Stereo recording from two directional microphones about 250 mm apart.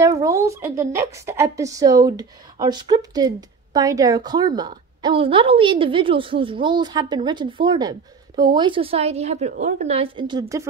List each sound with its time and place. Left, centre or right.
0.0 s a woman's voice: centre